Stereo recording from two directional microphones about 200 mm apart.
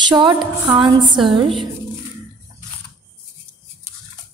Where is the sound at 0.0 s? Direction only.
20° right (ahead or behind).